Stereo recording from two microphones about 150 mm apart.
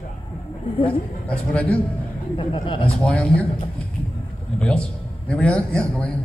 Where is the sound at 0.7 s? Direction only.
40° left (ahead or behind).